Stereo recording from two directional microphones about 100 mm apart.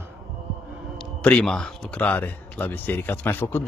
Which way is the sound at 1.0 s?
10° left (ahead or behind).